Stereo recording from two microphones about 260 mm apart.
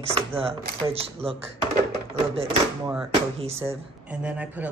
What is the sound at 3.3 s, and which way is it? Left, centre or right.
Speech, right.